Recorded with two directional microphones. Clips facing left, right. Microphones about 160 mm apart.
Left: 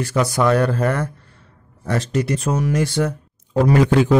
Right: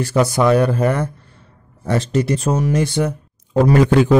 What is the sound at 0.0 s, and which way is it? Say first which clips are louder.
Speech: right 3 dB; 25° right (ahead or behind).